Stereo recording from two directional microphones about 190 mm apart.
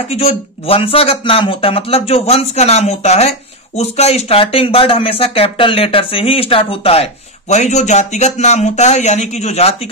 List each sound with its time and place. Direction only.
0.1 s speech: 35° left (ahead or behind)